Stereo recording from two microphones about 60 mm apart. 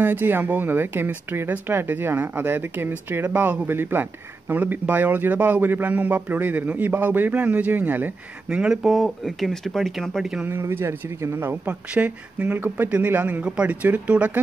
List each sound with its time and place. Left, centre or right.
0.0 s speech: right
8.5 s speech: centre
8.8 s speech: centre
10.5 s speech: right
11.6 s speech: right